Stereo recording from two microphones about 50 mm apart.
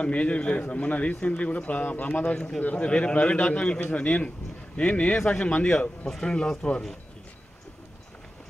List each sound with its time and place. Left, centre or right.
0.0 s a man's voice: left
5.7 s speech: centre